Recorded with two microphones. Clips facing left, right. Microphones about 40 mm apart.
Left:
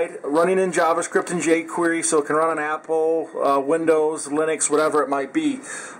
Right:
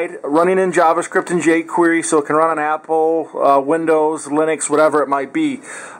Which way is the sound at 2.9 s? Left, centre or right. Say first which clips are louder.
Right 3 dB; right.